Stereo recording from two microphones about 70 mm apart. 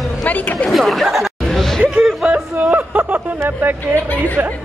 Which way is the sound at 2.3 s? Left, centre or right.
Centre.